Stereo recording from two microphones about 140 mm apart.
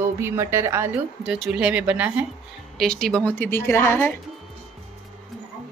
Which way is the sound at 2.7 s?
5° left (ahead or behind).